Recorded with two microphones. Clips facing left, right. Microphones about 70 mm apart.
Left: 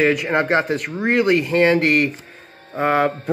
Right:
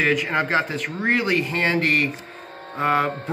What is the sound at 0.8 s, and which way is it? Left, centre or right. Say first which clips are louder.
Speech: left 2 dB; centre.